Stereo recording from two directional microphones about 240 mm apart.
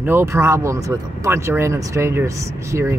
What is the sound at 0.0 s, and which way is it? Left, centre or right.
Speech, centre.